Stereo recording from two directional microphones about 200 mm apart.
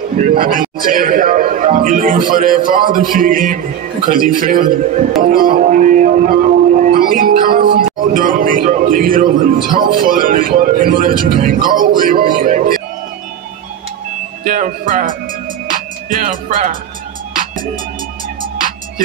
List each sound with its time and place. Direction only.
0.2 s a man's voice: 45° right (ahead or behind)
5.2 s music: 45° right (ahead or behind)
7.8 s a man's voice: 45° right (ahead or behind)
14.4 s speech: 40° right (ahead or behind)
15.7 s music: 40° right (ahead or behind)
18.4 s music: 45° right (ahead or behind)